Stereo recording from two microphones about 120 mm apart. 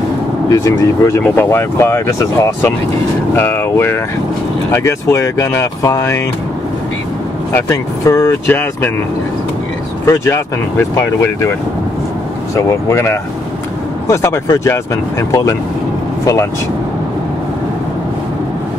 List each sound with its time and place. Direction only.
0.5 s speech: 25° left (ahead or behind)
7.5 s speech: 25° left (ahead or behind)
10.0 s speech: 25° left (ahead or behind)
12.9 s speech: 20° left (ahead or behind)